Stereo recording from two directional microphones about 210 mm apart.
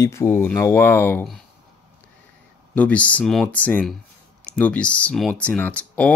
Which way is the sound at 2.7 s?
5° left (ahead or behind).